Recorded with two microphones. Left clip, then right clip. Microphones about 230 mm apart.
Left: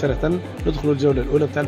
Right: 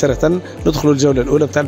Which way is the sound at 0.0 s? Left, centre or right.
Right.